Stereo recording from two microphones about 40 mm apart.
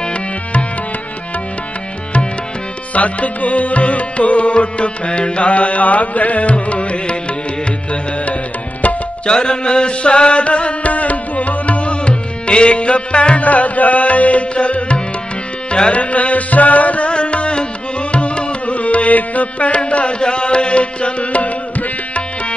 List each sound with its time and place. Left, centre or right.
0.0 s music: left
2.9 s music: left
9.2 s music: left